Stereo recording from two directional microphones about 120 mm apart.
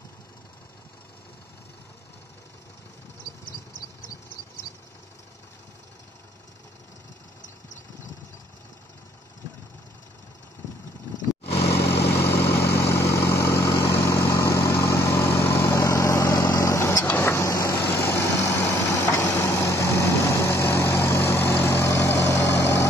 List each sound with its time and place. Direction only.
12.2 s vehicle: 20° left (ahead or behind)